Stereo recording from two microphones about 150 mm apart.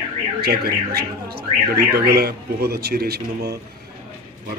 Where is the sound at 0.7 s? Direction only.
90° right.